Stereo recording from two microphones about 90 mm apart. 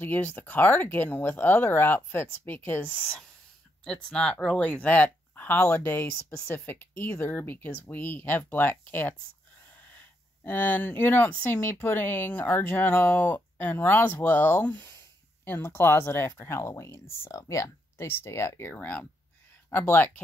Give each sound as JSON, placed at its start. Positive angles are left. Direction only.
{"t": 0.0, "sound": "speech", "side_deg": 20}
{"t": 3.8, "sound": "speech", "side_deg": 10}